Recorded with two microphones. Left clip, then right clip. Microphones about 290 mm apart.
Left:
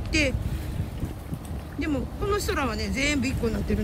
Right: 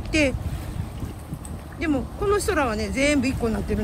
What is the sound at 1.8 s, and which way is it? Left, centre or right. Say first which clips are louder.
Speech: right 4 dB; centre.